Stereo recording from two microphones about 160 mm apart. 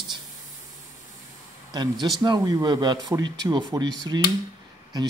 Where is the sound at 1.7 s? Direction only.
25° right (ahead or behind).